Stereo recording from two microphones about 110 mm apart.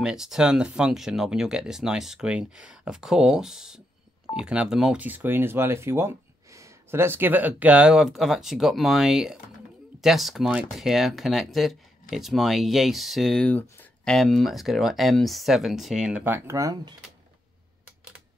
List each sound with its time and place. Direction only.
0.0 s speech: 5° right (ahead or behind)
5.0 s speech: 15° right (ahead or behind); by 13.5 s centre (ahead or behind)
13.5 s a sound: 15° left (ahead or behind)
14.1 s speech: 5° left (ahead or behind); by 16.9 s 35° right (ahead or behind)